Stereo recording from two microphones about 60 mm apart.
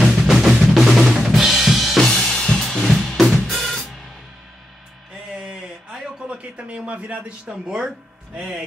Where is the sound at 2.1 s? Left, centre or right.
Centre.